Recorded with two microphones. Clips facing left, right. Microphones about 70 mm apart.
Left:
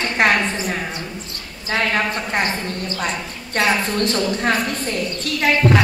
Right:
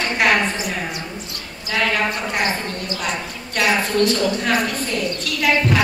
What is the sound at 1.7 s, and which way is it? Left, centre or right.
Speech, left.